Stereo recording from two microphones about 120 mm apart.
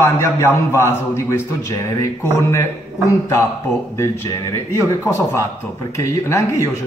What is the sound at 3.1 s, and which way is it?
Speech, 25° left (ahead or behind).